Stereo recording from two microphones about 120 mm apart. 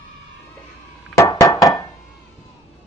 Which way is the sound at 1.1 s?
25° left (ahead or behind).